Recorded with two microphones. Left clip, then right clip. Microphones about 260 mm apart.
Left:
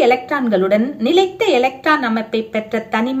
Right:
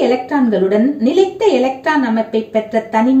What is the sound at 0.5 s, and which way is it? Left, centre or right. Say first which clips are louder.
Speech: even; left.